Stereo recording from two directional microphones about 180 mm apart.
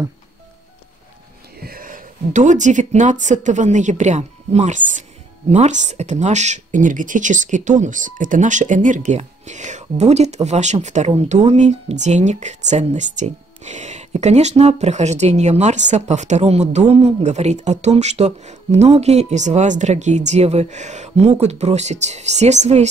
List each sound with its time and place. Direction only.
1.6 s speech: 55° right (ahead or behind)